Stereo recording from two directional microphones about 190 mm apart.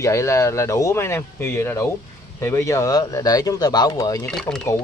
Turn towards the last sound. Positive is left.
turn(degrees=5)  # may be behind; listen again after turning